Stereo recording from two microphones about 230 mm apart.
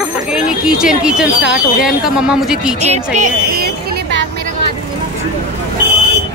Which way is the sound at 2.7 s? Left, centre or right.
Right.